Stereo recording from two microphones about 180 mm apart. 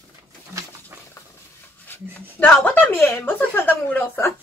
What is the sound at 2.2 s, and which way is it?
Speech, 10° left (ahead or behind).